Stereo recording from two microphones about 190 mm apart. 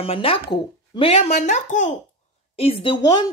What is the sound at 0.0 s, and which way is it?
A woman's voice, 30° left (ahead or behind).